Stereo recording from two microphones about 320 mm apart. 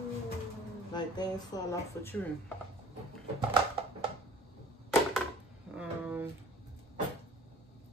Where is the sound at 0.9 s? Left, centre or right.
Centre.